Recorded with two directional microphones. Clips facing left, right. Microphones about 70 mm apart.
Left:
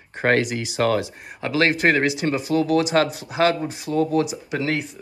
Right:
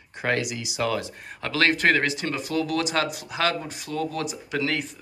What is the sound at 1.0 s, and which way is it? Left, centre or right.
Speech, centre.